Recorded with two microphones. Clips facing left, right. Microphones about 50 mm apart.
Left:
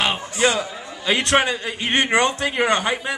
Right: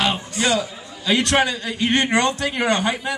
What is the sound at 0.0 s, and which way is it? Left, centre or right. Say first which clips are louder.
A man's voice: left 1 dB; left.